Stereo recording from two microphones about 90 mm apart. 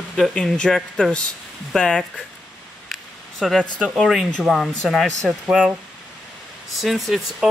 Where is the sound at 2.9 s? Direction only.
Centre (ahead or behind).